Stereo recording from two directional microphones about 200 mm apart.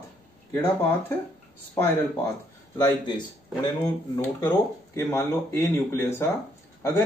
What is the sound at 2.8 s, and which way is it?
Speech, 20° left (ahead or behind).